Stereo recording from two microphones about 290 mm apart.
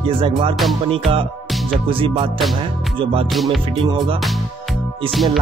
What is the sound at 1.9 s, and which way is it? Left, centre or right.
Music, centre.